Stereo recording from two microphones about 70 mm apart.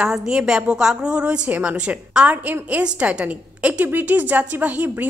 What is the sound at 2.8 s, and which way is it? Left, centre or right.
A woman's voice, centre.